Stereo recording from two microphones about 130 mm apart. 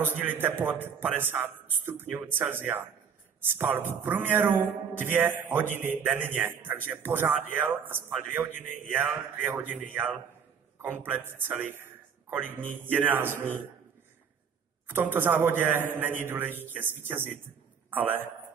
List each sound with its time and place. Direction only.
0.2 s a man's voice: 15° right (ahead or behind)
14.9 s a man's voice: 15° right (ahead or behind)